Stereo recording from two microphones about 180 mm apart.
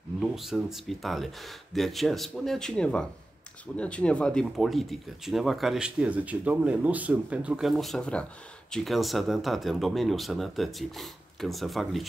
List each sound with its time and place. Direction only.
0.2 s speech: centre (ahead or behind)